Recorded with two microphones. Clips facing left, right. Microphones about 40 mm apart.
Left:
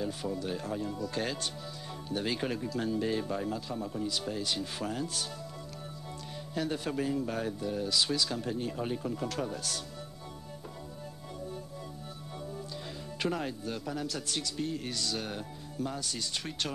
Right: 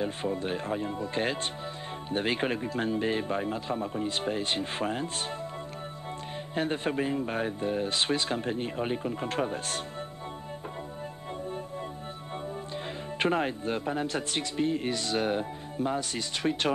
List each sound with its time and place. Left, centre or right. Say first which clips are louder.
0.0 s speech: right 4 dB; right
6.5 s speech: right 4 dB; right
13.2 s speech: right 6 dB; right